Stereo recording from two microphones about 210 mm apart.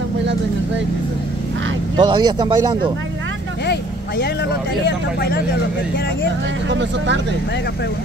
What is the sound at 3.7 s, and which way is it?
Speech, 55° left (ahead or behind).